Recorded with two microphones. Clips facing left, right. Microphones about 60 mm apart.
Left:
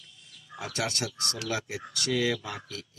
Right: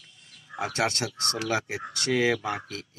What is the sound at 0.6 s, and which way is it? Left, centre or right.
Speech, right.